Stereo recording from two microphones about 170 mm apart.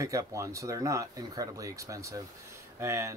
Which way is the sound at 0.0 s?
20° right (ahead or behind).